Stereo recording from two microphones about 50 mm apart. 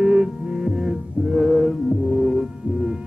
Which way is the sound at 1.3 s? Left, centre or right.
Centre.